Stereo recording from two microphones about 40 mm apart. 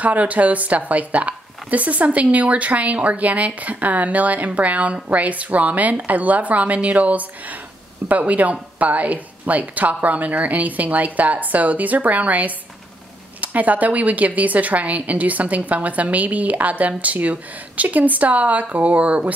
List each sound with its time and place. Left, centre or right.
0.0 s a woman's voice: right